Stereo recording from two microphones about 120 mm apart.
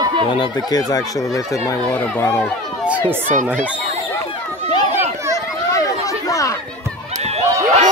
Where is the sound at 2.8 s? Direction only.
10° right (ahead or behind).